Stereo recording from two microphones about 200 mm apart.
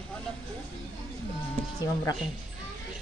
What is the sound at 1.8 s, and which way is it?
Speech, 15° left (ahead or behind).